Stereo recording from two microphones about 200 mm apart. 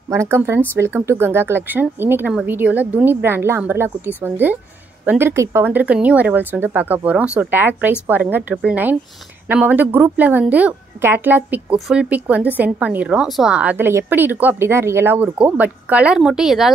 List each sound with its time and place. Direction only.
0.1 s speech: 15° right (ahead or behind)